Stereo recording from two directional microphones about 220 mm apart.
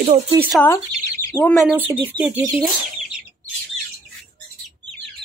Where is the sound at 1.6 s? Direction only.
5° right (ahead or behind).